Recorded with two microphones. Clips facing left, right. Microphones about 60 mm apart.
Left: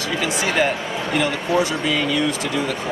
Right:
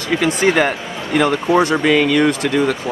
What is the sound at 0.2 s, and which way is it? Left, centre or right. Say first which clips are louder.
Speech: right 5 dB; right.